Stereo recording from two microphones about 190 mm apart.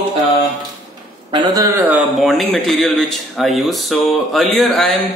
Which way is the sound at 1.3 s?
20° right (ahead or behind).